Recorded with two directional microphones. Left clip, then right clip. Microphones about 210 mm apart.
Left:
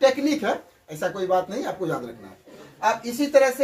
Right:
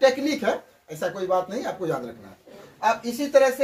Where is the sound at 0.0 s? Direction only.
15° right (ahead or behind).